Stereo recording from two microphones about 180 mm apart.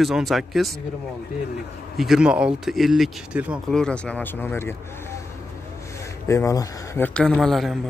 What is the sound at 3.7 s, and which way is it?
Speech, 5° left (ahead or behind).